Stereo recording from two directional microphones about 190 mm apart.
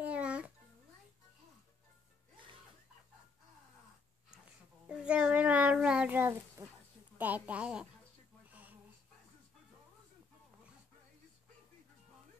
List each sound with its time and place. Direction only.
0.0 s babbling: 5° right (ahead or behind)
4.8 s child singing: 5° right (ahead or behind)
6.6 s a sound: 20° right (ahead or behind)